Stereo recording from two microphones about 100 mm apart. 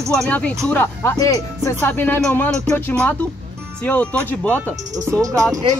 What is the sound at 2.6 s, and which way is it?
Speech, 10° left (ahead or behind).